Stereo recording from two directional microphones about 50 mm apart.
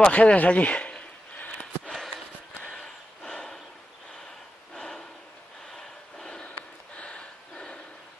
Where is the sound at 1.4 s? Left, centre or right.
Left.